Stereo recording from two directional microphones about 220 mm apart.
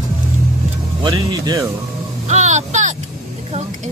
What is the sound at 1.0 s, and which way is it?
Speech, 15° right (ahead or behind).